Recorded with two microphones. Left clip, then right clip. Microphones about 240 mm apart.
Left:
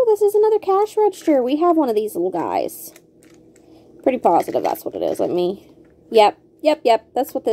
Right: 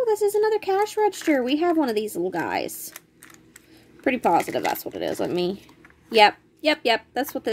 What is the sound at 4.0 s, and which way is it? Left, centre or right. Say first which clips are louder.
A woman's voice: left 5 dB; centre.